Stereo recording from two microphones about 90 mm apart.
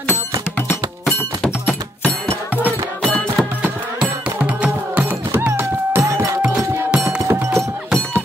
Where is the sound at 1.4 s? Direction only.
15° left (ahead or behind).